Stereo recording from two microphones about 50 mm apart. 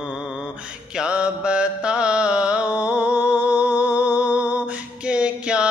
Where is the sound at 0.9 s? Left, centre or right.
Right.